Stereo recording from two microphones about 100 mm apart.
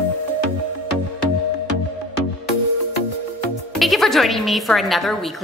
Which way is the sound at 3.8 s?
Centre (ahead or behind).